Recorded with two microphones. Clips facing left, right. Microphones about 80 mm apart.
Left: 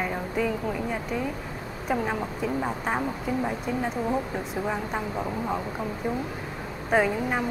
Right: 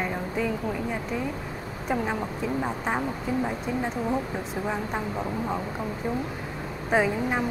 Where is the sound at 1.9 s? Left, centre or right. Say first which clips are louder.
Even; centre.